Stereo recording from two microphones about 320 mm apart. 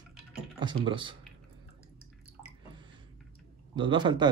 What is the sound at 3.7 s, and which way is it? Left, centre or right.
Speech, centre.